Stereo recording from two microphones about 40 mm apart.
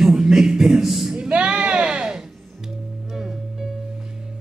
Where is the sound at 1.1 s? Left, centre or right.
Right.